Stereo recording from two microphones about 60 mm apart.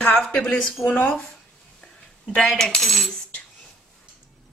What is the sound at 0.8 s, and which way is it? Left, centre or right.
Speech, left.